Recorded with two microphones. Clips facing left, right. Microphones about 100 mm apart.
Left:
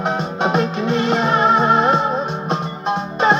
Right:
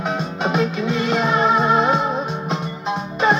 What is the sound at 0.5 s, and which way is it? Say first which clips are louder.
Music: left 1 dB; 55° left (ahead or behind).